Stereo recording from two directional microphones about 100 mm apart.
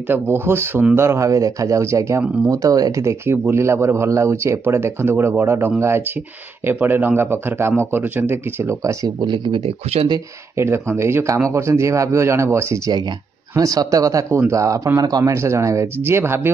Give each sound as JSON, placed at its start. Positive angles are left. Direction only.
{"t": 0.1, "sound": "speech", "side_deg": -25}
{"t": 9.3, "sound": "speech", "side_deg": -55}
{"t": 10.5, "sound": "speech", "side_deg": -25}